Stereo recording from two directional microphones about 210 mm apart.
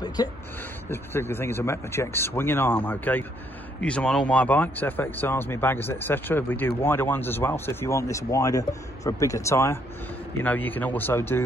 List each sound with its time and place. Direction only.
0.0 s speech: 20° left (ahead or behind)